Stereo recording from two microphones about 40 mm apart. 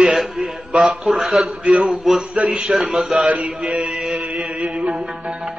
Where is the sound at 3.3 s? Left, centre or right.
Right.